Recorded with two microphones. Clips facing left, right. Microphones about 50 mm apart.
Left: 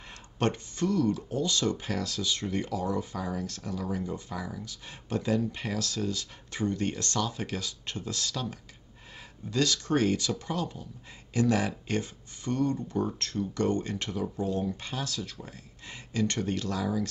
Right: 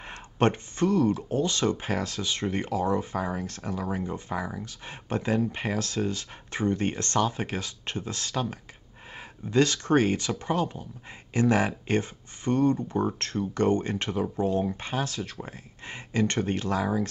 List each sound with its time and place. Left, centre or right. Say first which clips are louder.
0.0 s speech: right 5 dB; right